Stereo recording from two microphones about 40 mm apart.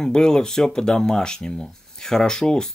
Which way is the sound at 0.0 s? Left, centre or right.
Centre.